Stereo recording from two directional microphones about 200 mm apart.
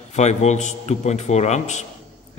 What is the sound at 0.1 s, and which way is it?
A man's voice, 35° left (ahead or behind).